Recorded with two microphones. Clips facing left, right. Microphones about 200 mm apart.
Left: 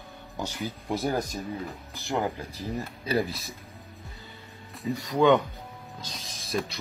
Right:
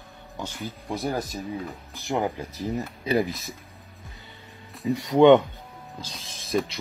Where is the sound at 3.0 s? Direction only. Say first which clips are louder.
Right 3 dB; 20° right (ahead or behind).